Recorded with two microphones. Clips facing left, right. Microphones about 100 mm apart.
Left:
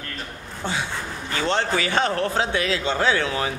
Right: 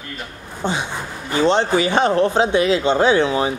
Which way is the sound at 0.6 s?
20° right (ahead or behind).